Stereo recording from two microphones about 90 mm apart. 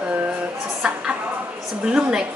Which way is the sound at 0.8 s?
5° right (ahead or behind).